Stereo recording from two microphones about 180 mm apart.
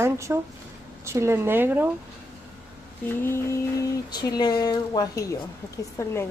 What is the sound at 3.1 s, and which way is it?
A woman's voice, 10° left (ahead or behind).